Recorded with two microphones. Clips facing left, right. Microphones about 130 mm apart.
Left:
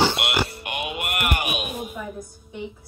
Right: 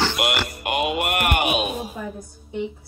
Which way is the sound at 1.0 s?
30° right (ahead or behind).